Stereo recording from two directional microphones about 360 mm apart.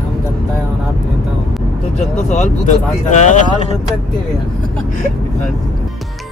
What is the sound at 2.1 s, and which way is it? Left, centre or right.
Speech, centre.